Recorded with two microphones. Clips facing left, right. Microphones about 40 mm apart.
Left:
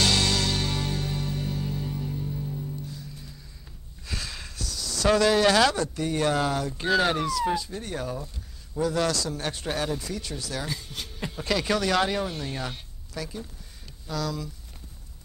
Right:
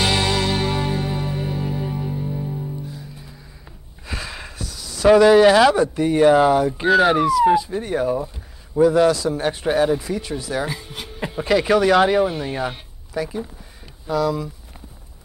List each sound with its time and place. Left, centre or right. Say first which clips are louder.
0.0 s music: right 4 dB; centre
2.9 s music: right 4 dB; centre
4.1 s a man's voice: right 5 dB; centre